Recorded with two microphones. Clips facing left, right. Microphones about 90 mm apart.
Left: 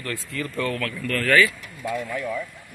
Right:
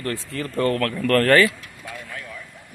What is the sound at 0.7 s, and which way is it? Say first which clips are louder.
Speech: right 7 dB; 55° right (ahead or behind).